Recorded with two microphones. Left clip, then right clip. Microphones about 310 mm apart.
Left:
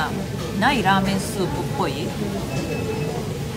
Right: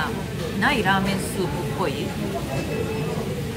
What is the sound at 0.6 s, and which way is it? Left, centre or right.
Speech, centre.